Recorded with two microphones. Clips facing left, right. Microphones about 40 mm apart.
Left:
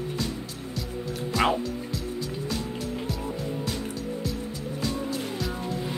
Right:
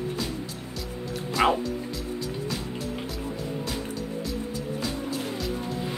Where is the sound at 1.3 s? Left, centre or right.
Centre.